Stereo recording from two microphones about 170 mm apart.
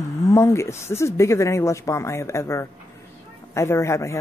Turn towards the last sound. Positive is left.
turn(degrees=15)  # may be behind; listen again after turning